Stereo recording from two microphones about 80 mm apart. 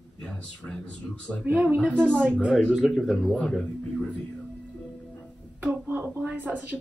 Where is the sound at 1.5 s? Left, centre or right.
Centre.